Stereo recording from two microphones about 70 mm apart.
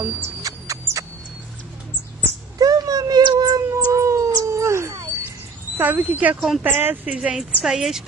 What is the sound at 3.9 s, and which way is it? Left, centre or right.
Dog, right.